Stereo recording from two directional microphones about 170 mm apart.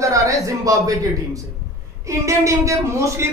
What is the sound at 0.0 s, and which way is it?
Speech, 20° right (ahead or behind).